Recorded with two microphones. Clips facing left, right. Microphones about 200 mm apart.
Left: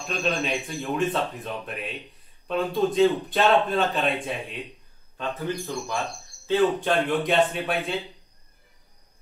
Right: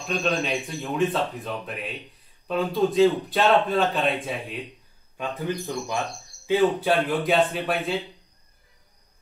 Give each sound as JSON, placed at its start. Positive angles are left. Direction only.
{"t": 0.0, "sound": "a man's voice", "side_deg": 0}
{"t": 5.1, "sound": "a man's voice", "side_deg": -15}